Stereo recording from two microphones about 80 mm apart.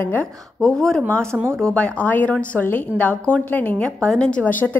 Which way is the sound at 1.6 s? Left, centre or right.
Centre.